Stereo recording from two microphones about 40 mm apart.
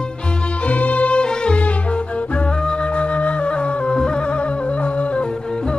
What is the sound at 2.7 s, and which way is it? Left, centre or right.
Music, left.